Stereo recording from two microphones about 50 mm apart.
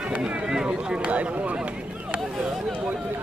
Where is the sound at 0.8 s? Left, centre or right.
Right.